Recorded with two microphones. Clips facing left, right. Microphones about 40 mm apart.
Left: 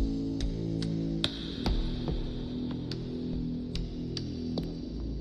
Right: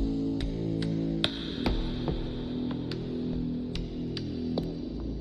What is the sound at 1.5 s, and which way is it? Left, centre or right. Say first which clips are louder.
Hum: right 3 dB; centre.